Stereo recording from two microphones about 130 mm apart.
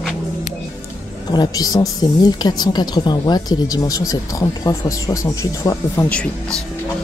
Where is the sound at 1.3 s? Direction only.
35° left (ahead or behind).